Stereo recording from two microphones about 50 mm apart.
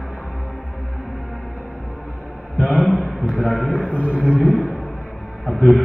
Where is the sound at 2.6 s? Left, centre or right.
Centre.